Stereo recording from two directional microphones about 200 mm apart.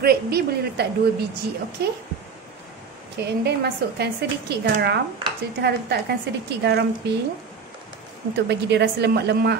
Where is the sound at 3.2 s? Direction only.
55° right (ahead or behind).